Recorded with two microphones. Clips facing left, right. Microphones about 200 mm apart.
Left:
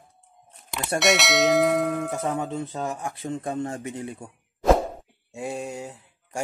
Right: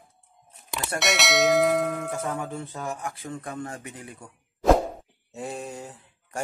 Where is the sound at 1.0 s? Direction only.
Centre (ahead or behind).